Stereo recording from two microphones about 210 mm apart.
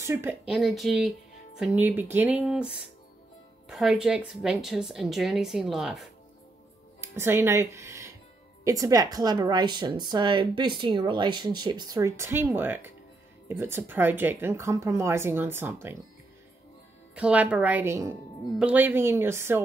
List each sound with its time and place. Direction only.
0.0 s a woman's voice: 10° right (ahead or behind)
17.1 s speech: 5° right (ahead or behind)